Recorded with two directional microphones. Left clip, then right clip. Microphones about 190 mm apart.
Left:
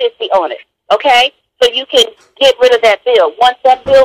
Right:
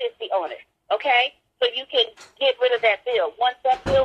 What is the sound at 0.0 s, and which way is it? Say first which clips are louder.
A woman's voice: left 12 dB; 45° left (ahead or behind).